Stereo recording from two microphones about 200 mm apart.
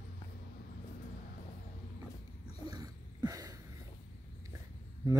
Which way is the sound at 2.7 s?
20° right (ahead or behind).